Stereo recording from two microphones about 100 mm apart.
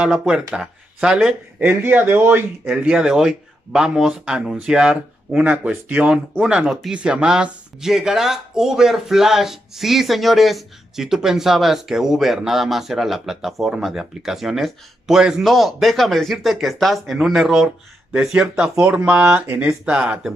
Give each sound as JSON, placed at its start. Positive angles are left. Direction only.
{"t": 0.0, "sound": "speech", "side_deg": -5}
{"t": 1.6, "sound": "speech", "side_deg": -20}
{"t": 2.6, "sound": "speech", "side_deg": -10}